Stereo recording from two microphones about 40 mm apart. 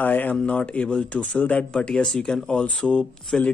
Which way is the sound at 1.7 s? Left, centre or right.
Left.